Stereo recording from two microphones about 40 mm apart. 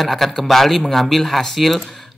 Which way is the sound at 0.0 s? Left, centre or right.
Centre.